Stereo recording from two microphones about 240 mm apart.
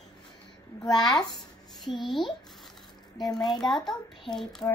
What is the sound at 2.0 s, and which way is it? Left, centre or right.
A child's voice, centre.